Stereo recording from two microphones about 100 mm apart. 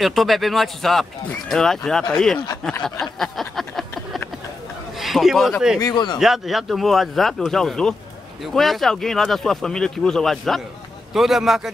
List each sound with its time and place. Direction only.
0.0 s speech: centre (ahead or behind)
2.8 s a sound: 5° left (ahead or behind)
4.9 s speech: centre (ahead or behind)
5.8 s speech: 40° left (ahead or behind)
6.1 s speech: centre (ahead or behind)